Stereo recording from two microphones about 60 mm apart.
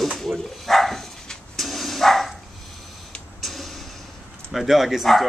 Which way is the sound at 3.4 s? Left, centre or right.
Centre.